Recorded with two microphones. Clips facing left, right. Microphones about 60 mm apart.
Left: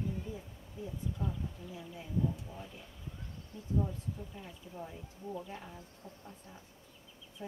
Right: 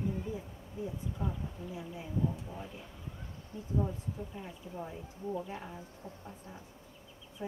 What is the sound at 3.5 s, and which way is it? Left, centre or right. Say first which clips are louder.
Speech: right 6 dB; right.